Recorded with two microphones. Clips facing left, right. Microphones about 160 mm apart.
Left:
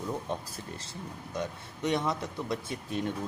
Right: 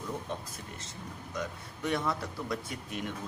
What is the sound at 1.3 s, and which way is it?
Speech, 25° left (ahead or behind).